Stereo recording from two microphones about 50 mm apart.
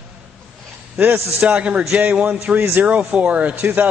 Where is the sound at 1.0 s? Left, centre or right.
Right.